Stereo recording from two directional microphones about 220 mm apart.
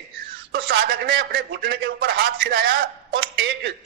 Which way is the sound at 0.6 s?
45° right (ahead or behind).